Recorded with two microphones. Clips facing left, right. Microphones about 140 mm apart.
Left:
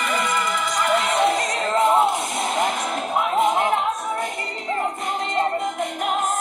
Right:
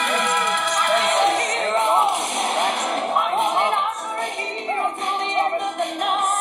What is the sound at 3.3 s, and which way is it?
Music, 70° right (ahead or behind).